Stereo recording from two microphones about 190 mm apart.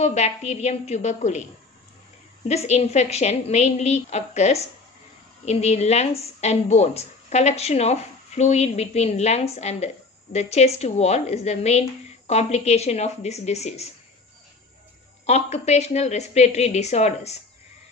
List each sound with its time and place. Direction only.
0.0 s a woman's voice: 35° left (ahead or behind)
2.4 s a woman's voice: 35° left (ahead or behind)
15.2 s a woman's voice: 35° left (ahead or behind)